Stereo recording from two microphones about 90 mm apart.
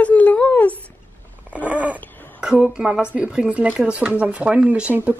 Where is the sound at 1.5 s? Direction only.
15° right (ahead or behind).